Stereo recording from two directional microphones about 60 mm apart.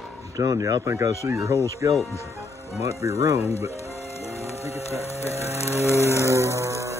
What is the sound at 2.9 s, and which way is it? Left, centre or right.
Speech, right.